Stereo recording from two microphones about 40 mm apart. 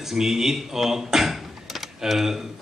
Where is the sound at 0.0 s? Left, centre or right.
Centre.